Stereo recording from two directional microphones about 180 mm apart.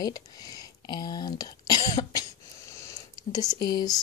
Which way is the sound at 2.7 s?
15° left (ahead or behind).